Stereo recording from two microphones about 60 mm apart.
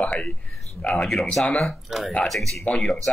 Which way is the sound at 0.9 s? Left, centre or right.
Centre.